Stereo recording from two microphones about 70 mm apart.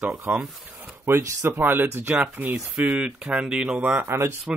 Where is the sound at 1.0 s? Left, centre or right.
Right.